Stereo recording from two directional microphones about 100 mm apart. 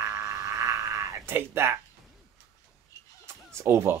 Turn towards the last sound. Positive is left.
turn(degrees=-25)  # may be behind; listen again after turning